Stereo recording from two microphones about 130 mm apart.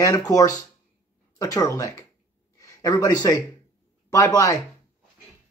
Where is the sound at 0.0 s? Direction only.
30° left (ahead or behind).